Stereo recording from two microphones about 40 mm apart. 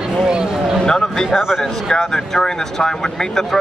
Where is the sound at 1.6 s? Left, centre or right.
Centre.